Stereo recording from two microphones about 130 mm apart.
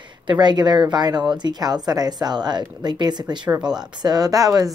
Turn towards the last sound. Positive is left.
turn(degrees=-25)  # may be behind; listen again after turning